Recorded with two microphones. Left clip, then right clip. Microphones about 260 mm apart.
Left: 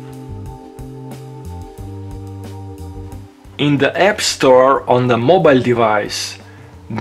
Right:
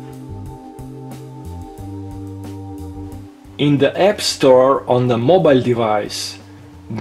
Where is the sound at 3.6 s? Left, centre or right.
Left.